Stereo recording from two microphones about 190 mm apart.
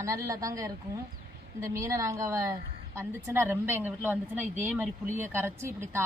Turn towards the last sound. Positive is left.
turn(degrees=-15)  # may be behind; listen again after turning